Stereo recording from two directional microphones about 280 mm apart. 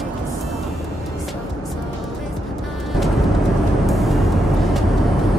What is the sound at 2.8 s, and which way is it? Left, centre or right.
Music, centre.